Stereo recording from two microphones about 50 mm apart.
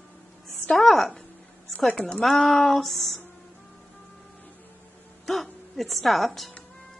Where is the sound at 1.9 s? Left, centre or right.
Left.